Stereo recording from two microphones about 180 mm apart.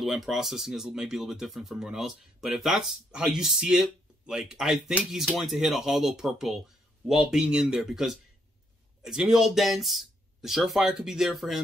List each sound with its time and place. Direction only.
0.0 s speech: centre (ahead or behind)